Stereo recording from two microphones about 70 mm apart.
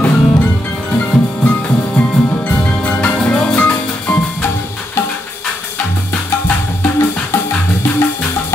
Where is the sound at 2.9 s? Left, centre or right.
Centre.